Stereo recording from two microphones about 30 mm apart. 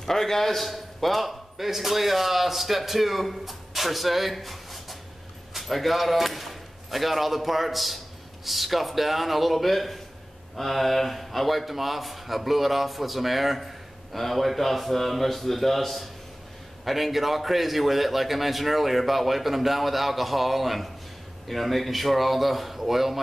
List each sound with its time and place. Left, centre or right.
0.0 s a man's voice: centre